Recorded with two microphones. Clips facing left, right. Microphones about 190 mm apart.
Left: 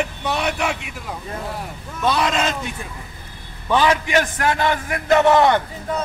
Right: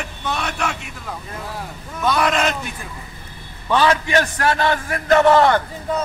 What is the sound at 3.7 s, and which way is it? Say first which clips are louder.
A man's voice: even; 15° left (ahead or behind).